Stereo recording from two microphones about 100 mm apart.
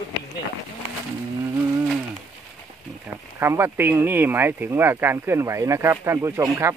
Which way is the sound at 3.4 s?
25° right (ahead or behind).